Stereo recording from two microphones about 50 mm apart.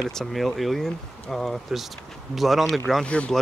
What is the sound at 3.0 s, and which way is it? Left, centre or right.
Speech, left.